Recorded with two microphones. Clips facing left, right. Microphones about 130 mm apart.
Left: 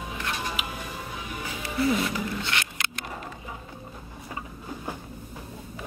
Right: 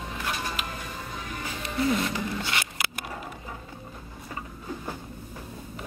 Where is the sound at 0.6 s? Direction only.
5° left (ahead or behind).